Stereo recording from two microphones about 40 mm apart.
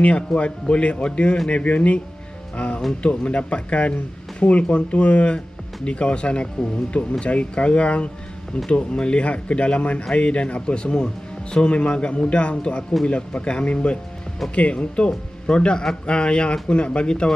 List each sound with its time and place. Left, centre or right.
0.3 s speech: left